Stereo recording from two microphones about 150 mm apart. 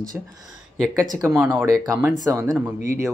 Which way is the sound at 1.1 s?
15° right (ahead or behind).